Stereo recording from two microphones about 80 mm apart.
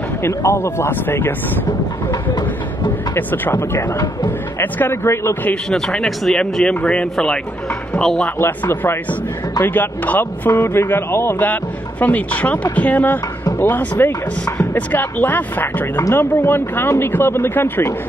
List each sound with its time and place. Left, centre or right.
0.2 s speech: left
3.2 s speech: left
5.4 s speech: centre
5.9 s speech: centre
8.4 s speech: left
12.0 s speech: centre